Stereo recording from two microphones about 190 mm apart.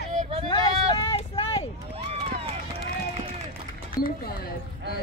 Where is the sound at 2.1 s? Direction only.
30° right (ahead or behind).